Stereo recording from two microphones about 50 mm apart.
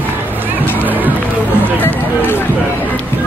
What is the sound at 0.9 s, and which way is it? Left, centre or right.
Speech, right.